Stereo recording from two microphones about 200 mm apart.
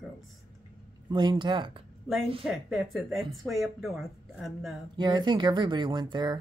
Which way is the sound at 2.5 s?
Centre (ahead or behind).